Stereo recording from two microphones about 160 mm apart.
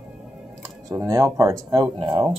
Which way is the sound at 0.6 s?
20° right (ahead or behind).